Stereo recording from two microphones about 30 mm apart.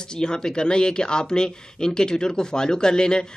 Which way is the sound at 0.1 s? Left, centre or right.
Left.